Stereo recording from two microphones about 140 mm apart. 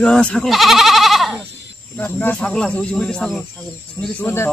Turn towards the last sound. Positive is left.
turn(degrees=15)  # may be behind; listen again after turning